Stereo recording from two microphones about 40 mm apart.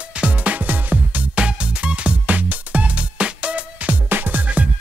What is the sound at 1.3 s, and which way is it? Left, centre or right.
Music, right.